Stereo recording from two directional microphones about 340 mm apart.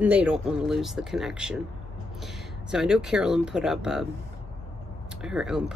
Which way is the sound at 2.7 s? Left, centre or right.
Centre.